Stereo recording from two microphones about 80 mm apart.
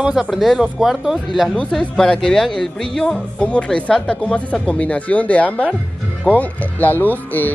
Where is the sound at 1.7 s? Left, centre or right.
Centre.